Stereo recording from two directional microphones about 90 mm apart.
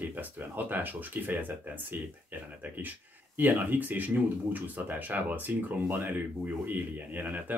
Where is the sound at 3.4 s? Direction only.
20° right (ahead or behind).